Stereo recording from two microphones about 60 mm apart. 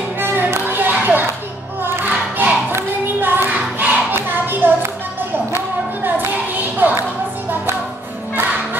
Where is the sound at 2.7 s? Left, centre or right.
Right.